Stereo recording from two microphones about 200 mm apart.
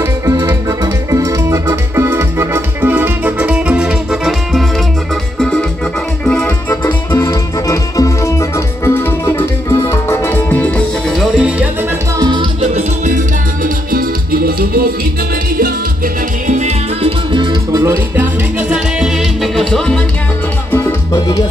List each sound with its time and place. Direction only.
0.0 s music: 15° right (ahead or behind); by 4.6 s centre (ahead or behind)
5.4 s organ: centre (ahead or behind)
6.2 s music: 5° left (ahead or behind)
12.2 s music: 25° right (ahead or behind)
13.9 s music: 45° right (ahead or behind)
16.4 s music: 35° right (ahead or behind); by 17.9 s 20° right (ahead or behind)
18.1 s music: 5° right (ahead or behind)
20.7 s salsa music: 15° left (ahead or behind)